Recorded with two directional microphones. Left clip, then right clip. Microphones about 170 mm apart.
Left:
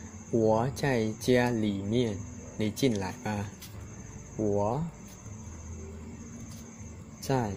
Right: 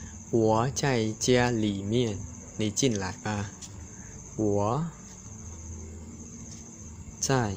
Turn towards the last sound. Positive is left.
turn(degrees=-25)  # may be behind; listen again after turning